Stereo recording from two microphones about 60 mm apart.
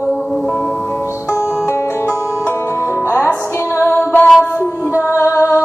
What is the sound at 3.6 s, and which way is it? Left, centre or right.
Music, left.